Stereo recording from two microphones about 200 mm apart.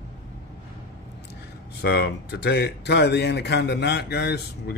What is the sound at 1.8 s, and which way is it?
Speech, 55° left (ahead or behind).